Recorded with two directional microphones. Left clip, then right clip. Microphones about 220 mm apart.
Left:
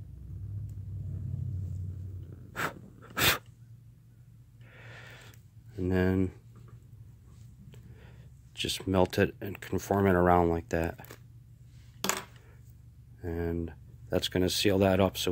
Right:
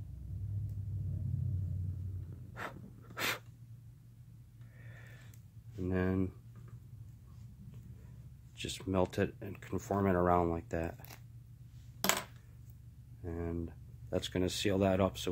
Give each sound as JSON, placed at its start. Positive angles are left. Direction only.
{"t": 2.5, "sound": "a sound", "side_deg": 35}
{"t": 4.7, "sound": "a sound", "side_deg": 35}
{"t": 5.8, "sound": "speech", "side_deg": 30}
{"t": 8.5, "sound": "speech", "side_deg": 30}
{"t": 12.0, "sound": "coin", "side_deg": -10}
{"t": 13.2, "sound": "speech", "side_deg": 25}